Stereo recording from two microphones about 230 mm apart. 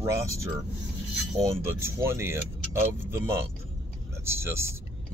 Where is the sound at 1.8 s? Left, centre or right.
Centre.